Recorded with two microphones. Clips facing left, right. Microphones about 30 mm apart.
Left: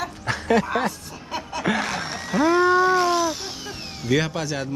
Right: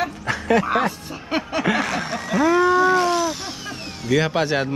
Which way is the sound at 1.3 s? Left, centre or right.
Right.